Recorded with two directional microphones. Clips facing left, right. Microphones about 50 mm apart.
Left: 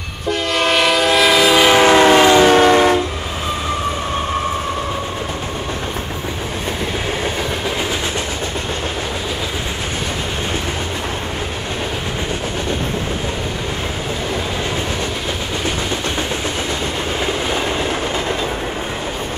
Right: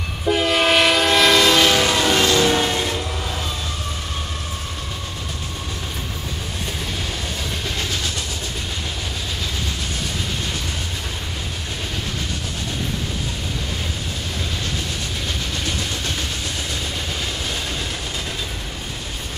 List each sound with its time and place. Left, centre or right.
0.3 s train: centre
1.9 s train: left
2.4 s train: left